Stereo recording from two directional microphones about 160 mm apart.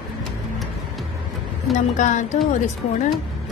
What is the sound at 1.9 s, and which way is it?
Speech, 50° left (ahead or behind).